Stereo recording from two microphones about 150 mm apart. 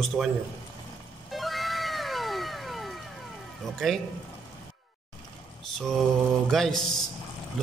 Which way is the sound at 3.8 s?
Centre (ahead or behind).